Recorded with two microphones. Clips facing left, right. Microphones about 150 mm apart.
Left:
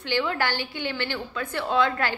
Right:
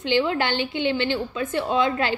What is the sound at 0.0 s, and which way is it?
A woman's voice, 20° right (ahead or behind).